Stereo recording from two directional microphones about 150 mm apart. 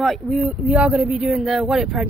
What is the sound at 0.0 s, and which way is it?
Speech, centre (ahead or behind).